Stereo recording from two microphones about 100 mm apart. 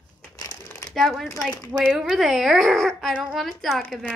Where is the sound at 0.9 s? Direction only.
Centre (ahead or behind).